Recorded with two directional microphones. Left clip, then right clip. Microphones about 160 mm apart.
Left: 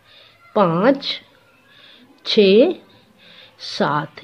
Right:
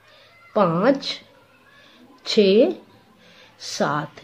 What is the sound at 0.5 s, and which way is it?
Speech, 20° left (ahead or behind).